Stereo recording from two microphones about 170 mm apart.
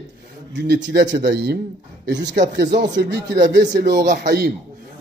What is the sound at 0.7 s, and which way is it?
Speech, 85° right.